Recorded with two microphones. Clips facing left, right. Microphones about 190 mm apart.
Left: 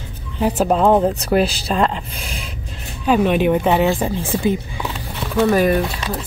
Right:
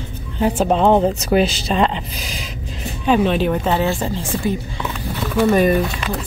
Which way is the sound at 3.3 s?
15° left (ahead or behind).